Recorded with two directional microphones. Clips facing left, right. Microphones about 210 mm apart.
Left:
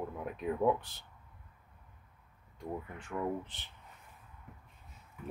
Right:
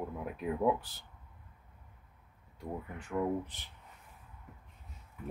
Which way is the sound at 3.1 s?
10° right (ahead or behind).